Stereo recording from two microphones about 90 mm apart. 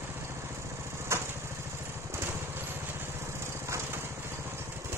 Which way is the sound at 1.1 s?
30° right (ahead or behind).